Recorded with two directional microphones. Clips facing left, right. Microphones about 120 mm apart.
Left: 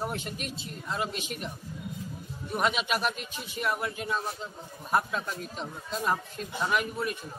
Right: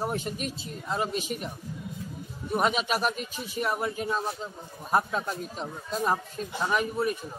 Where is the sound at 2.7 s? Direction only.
40° right (ahead or behind).